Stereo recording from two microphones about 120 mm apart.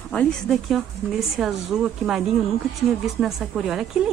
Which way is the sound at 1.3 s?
5° right (ahead or behind).